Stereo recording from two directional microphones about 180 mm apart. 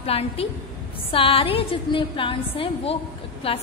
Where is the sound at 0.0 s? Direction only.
35° left (ahead or behind).